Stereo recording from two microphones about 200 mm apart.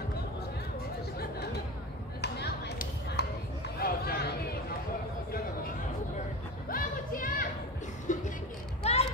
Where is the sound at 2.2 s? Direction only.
55° left (ahead or behind).